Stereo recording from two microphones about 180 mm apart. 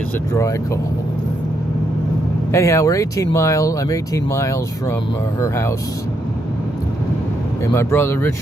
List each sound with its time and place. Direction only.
0.3 s speech: 15° left (ahead or behind)
2.5 s speech: 15° left (ahead or behind)
7.7 s speech: 15° left (ahead or behind)